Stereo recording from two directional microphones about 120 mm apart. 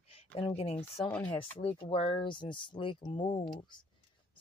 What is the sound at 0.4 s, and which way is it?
Speech, 55° left (ahead or behind).